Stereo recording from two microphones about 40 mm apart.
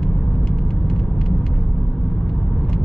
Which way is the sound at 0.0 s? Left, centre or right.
Centre.